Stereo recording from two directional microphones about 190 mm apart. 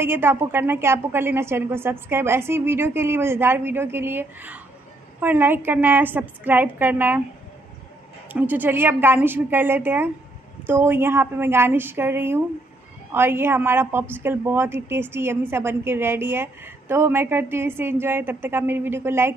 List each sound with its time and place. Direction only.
0.0 s a woman's voice: 10° right (ahead or behind)
8.3 s a woman's voice: 10° right (ahead or behind)